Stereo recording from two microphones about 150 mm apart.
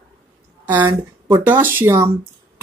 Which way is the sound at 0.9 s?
25° right (ahead or behind).